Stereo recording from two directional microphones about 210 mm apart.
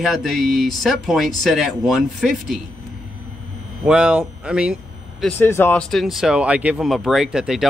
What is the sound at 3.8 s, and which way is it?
Speech, 5° right (ahead or behind).